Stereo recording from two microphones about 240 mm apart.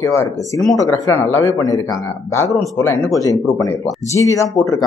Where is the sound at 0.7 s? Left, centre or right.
Centre.